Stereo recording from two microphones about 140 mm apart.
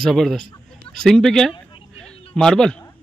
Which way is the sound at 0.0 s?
Centre (ahead or behind).